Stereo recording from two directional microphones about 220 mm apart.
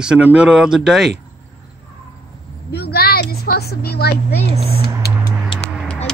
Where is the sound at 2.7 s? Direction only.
45° left (ahead or behind).